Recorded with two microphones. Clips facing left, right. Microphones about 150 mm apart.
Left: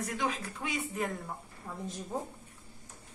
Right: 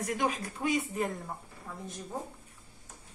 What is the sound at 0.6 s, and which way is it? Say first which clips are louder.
Speech: right 8 dB; 15° right (ahead or behind).